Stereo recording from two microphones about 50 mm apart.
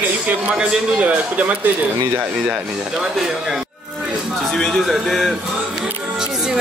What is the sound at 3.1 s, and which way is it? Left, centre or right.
Speech, centre.